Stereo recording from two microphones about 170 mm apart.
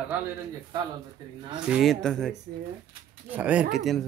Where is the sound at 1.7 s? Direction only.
Centre (ahead or behind).